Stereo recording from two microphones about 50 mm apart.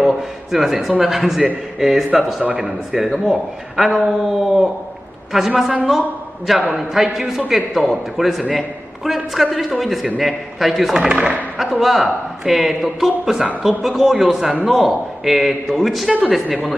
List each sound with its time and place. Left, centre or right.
0.0 s a man's voice: centre
11.1 s speech: right
11.8 s a man's voice: centre